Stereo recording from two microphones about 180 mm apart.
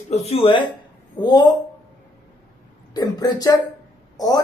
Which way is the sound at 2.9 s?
20° left (ahead or behind).